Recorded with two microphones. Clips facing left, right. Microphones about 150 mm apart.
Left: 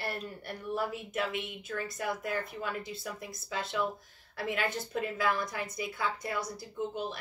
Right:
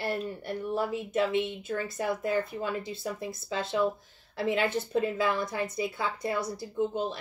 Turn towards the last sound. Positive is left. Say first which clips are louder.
# right 6 dB
turn(degrees=-25)  # may be behind; listen again after turning